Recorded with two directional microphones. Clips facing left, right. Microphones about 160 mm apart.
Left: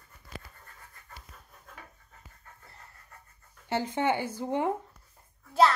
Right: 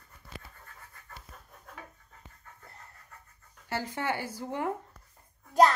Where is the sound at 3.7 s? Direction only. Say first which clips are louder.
Left 5 dB; 20° left (ahead or behind).